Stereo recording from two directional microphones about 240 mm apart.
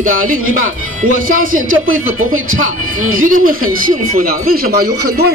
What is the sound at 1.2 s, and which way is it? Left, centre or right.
Speech, right.